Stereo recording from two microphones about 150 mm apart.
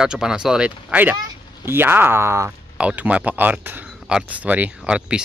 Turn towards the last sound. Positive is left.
turn(degrees=-5)  # may be behind; listen again after turning